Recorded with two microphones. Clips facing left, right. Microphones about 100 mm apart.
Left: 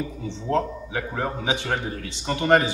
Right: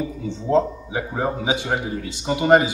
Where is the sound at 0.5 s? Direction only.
15° right (ahead or behind).